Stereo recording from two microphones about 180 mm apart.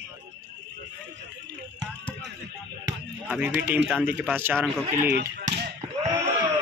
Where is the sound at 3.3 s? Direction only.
10° right (ahead or behind).